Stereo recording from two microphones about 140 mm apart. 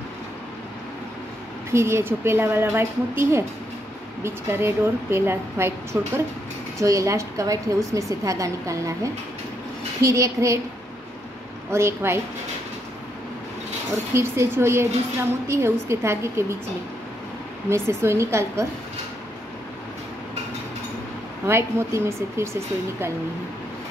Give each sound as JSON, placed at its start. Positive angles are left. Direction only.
{"t": 1.7, "sound": "a woman's voice", "side_deg": -20}
{"t": 11.7, "sound": "a woman's voice", "side_deg": -20}
{"t": 14.1, "sound": "a woman's voice", "side_deg": -20}
{"t": 17.6, "sound": "a woman's voice", "side_deg": -20}
{"t": 21.5, "sound": "a woman's voice", "side_deg": -20}